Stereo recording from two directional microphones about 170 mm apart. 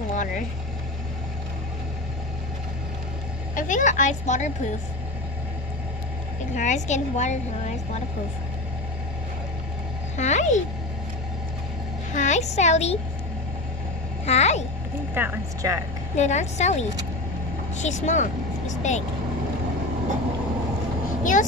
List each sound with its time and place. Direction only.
0.1 s speech: 50° left (ahead or behind)
3.5 s a woman's voice: 50° left (ahead or behind)
6.5 s a woman's voice: 45° left (ahead or behind)
10.1 s a woman's voice: 45° left (ahead or behind)
12.1 s a child's voice: 45° left (ahead or behind)
14.2 s a child's voice: 40° left (ahead or behind)
15.1 s a woman's voice: 15° right (ahead or behind)
16.2 s a woman's voice: 45° left (ahead or behind)
21.2 s speech: 50° left (ahead or behind)